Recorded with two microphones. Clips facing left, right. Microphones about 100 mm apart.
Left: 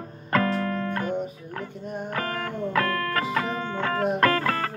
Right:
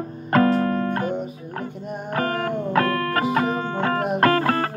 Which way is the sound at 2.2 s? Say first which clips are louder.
Right 7 dB; 55° right (ahead or behind).